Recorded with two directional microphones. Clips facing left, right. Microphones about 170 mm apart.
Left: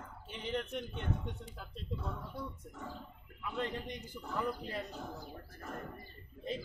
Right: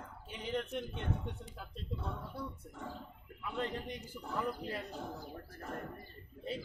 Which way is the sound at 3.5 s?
Centre (ahead or behind).